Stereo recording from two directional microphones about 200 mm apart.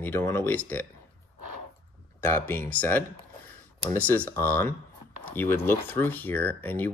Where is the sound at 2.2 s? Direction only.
10° left (ahead or behind).